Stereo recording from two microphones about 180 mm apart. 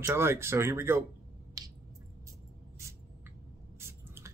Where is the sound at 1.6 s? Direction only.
20° right (ahead or behind).